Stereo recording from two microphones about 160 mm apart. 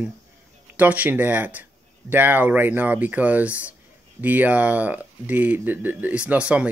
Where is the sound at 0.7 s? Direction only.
10° right (ahead or behind).